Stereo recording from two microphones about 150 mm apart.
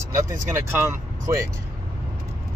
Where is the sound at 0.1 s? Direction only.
20° right (ahead or behind).